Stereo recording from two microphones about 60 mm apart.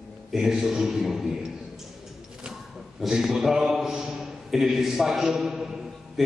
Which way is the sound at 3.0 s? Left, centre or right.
Centre.